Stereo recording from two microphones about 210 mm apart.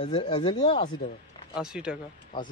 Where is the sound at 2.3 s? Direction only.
20° left (ahead or behind).